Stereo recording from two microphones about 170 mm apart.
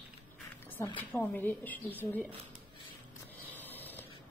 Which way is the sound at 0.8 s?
15° left (ahead or behind).